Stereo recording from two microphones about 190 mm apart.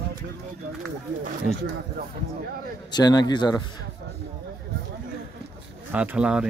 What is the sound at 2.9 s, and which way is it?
Speech, 20° left (ahead or behind).